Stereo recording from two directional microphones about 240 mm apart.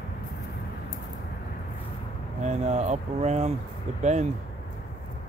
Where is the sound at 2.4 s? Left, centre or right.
Right.